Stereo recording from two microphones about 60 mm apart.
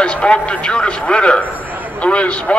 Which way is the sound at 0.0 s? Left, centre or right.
Centre.